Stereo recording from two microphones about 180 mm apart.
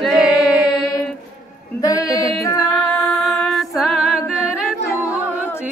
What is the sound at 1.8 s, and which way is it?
Music, 20° left (ahead or behind).